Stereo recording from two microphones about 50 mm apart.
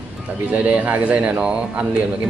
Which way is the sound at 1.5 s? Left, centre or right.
Centre.